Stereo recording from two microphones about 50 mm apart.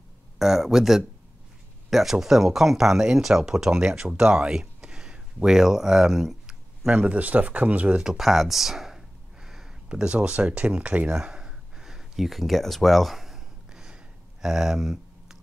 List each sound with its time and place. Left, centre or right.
0.4 s speech: centre
6.9 s speech: right
8.0 s a sound: centre
9.8 s speech: centre
11.1 s a sound: centre
14.4 s speech: centre